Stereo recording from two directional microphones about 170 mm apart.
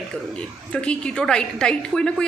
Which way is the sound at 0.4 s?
5° left (ahead or behind).